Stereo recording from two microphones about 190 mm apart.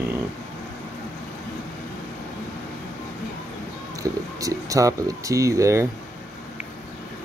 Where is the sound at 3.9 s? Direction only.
20° right (ahead or behind).